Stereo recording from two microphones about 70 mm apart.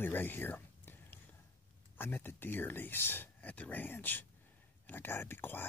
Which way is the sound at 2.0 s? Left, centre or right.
Left.